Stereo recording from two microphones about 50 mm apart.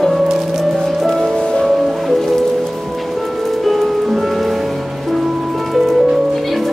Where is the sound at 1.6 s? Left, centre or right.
Centre.